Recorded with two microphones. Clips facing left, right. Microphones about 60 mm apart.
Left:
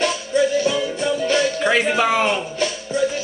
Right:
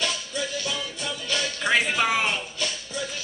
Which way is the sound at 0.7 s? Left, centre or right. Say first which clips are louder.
Left 11 dB; left.